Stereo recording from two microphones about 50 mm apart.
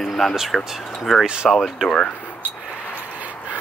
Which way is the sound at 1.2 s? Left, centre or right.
Centre.